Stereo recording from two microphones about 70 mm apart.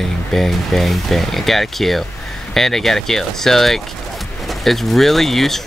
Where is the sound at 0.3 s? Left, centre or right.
Centre.